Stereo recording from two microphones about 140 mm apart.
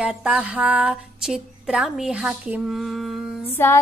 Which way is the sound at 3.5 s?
15° left (ahead or behind).